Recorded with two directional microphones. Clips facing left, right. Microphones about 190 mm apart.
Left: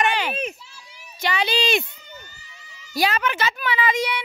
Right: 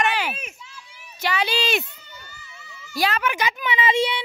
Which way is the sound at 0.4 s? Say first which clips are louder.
Left 10 dB; 35° left (ahead or behind).